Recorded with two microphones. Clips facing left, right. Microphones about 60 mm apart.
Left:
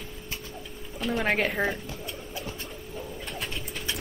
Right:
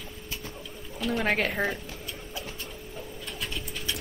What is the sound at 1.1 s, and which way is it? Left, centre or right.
Speech, centre.